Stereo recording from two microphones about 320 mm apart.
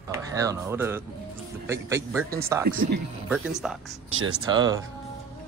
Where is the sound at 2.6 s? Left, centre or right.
Right.